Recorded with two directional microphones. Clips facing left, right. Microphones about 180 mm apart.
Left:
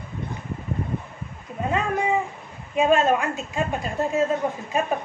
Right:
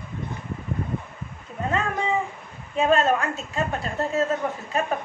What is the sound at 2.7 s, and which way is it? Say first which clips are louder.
A woman's voice: left 1 dB; 15° left (ahead or behind).